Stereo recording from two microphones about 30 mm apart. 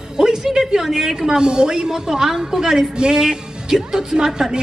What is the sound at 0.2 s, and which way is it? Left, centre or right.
Speech, right.